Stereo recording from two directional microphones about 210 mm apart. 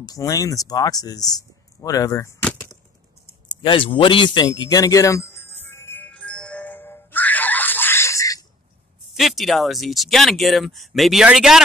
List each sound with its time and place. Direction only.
0.0 s speech: 15° left (ahead or behind)
1.8 s chop: 15° left (ahead or behind)
3.6 s music: 25° left (ahead or behind)
9.2 s speech: centre (ahead or behind)